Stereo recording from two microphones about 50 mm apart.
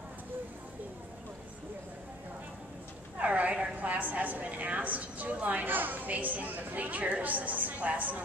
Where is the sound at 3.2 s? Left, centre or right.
Right.